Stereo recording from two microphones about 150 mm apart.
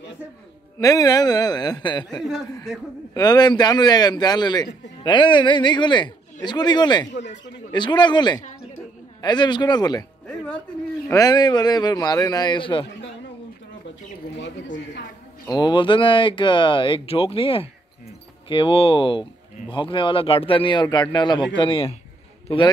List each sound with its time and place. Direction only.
0.7 s a man's voice: 25° left (ahead or behind)
3.2 s a man's voice: 25° left (ahead or behind)
10.2 s music: 5° left (ahead or behind)
11.1 s a man's voice: 25° left (ahead or behind)
15.4 s speech: 25° left (ahead or behind)